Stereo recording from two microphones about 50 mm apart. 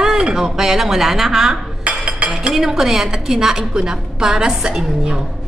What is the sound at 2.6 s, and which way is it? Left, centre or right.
A woman's voice, centre.